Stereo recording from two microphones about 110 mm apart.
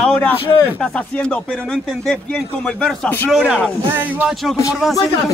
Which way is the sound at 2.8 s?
15° left (ahead or behind).